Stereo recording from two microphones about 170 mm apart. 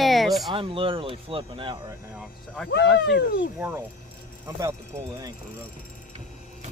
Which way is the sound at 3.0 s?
90° left.